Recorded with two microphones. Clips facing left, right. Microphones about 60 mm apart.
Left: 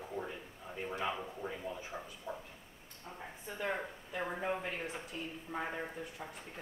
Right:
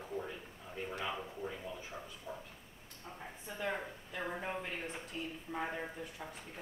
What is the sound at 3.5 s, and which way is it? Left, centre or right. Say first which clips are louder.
Speech: left 1 dB; centre.